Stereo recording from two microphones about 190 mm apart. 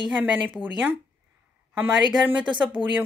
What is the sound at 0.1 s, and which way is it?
Speech, 10° right (ahead or behind).